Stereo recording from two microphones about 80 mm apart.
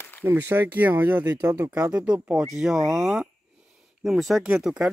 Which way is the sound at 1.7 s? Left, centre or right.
Centre.